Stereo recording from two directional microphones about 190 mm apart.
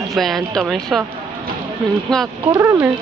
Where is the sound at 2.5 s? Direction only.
15° right (ahead or behind).